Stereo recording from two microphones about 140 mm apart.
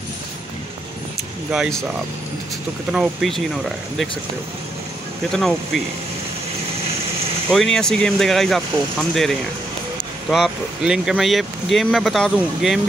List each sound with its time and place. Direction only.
1.5 s speech: centre (ahead or behind)
2.9 s speech: centre (ahead or behind)
5.3 s speech: centre (ahead or behind)
7.5 s speech: 5° left (ahead or behind)